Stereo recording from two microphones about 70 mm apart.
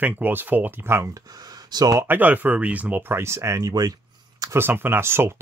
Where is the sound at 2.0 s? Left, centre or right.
Right.